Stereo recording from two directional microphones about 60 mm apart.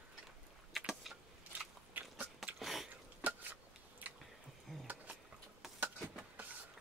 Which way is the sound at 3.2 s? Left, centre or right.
Right.